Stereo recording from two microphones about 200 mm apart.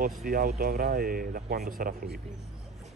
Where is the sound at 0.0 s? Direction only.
45° right (ahead or behind).